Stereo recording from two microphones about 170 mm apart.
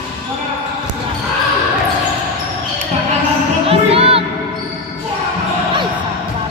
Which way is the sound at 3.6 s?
35° right (ahead or behind).